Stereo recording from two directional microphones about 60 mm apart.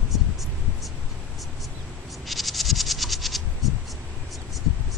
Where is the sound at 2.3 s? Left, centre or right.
Centre.